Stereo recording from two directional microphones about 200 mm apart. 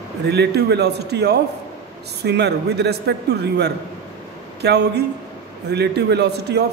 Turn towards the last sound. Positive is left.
turn(degrees=-55)  # may be behind; listen again after turning